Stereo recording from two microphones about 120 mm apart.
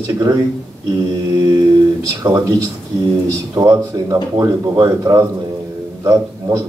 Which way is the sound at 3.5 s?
30° right (ahead or behind).